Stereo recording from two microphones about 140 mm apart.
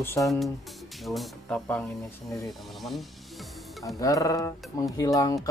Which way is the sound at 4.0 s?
25° left (ahead or behind).